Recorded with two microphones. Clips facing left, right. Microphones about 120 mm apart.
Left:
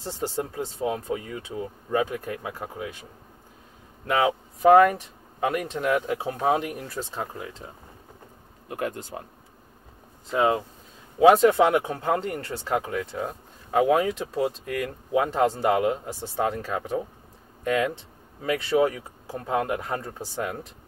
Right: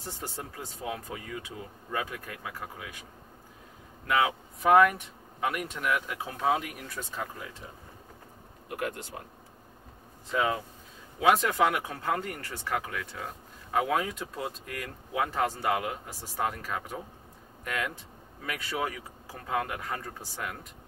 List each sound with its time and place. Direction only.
0.4 s speech: 30° left (ahead or behind)
4.1 s speech: 35° left (ahead or behind)
8.6 s speech: 30° left (ahead or behind)
10.3 s speech: 30° left (ahead or behind)